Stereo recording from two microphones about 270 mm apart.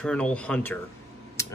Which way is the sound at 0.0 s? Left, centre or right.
Centre.